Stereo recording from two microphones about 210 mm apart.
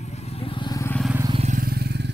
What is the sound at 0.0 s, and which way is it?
Vehicle, 30° left (ahead or behind).